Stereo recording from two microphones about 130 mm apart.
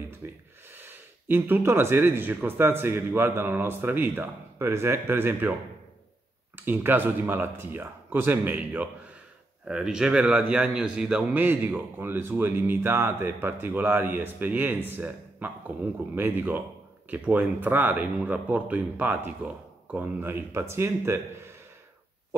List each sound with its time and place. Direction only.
0.2 s a man's voice: 20° right (ahead or behind)
6.5 s a man's voice: 15° right (ahead or behind)